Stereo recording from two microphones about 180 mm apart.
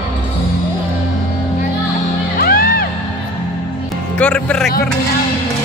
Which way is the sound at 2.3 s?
55° left (ahead or behind).